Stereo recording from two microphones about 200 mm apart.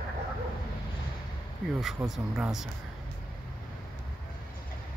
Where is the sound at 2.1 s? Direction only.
5° right (ahead or behind).